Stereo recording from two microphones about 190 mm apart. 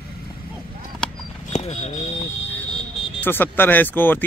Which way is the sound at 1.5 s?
35° left (ahead or behind).